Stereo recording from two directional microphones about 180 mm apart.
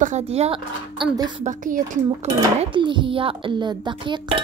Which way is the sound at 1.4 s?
45° right (ahead or behind).